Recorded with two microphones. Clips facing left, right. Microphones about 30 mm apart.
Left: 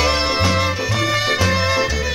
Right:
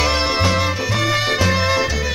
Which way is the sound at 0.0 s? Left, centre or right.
Centre.